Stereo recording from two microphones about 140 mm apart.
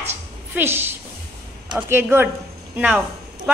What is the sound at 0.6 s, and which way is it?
A woman's voice, 15° right (ahead or behind).